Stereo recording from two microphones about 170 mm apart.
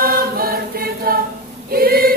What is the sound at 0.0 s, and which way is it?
Choir, 60° right (ahead or behind).